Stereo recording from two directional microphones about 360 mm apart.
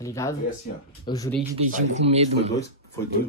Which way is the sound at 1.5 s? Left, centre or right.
Centre.